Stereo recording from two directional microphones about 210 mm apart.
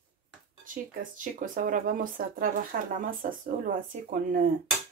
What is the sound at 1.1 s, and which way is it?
Speech, 40° right (ahead or behind).